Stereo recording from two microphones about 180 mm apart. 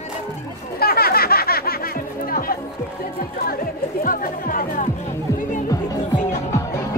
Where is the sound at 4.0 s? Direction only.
50° left (ahead or behind).